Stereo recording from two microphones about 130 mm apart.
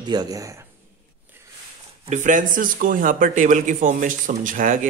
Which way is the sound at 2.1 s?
80° right.